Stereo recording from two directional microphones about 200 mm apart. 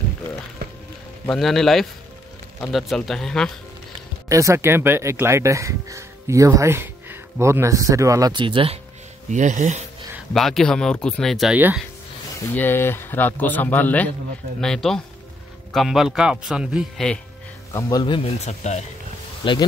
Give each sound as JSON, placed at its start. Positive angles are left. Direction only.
{"t": 1.2, "sound": "speech", "side_deg": 0}
{"t": 4.3, "sound": "speech", "side_deg": -15}
{"t": 9.3, "sound": "speech", "side_deg": -40}
{"t": 10.1, "sound": "speech", "side_deg": 0}
{"t": 12.4, "sound": "a man's voice", "side_deg": 10}
{"t": 17.7, "sound": "a man's voice", "side_deg": 20}
{"t": 19.4, "sound": "speech", "side_deg": 25}